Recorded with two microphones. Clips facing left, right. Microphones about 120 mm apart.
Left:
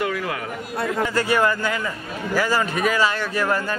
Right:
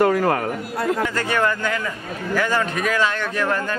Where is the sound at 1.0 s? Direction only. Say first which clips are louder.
Left 1 dB; 10° left (ahead or behind).